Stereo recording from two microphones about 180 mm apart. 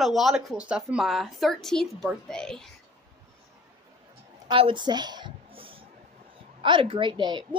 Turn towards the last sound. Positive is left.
turn(degrees=-25)  # may be behind; listen again after turning